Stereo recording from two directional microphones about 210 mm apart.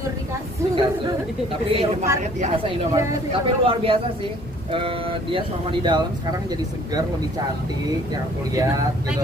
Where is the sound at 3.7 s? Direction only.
25° right (ahead or behind).